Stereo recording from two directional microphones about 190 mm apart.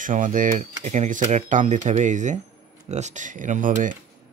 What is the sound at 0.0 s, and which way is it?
Speech, 45° right (ahead or behind).